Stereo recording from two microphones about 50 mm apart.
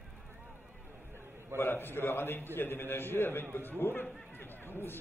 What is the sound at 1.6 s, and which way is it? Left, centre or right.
A man's voice, left.